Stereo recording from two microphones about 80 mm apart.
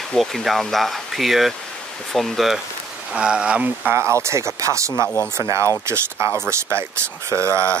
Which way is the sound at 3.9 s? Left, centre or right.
Right.